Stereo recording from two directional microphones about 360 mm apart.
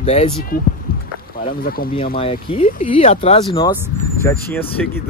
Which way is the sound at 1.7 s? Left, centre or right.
Centre.